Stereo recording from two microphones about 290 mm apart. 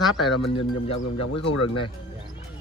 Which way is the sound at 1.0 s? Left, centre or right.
Left.